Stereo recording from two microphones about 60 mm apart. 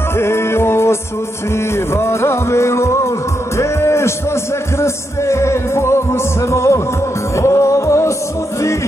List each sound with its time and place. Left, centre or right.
0.2 s music: left
2.0 s music: left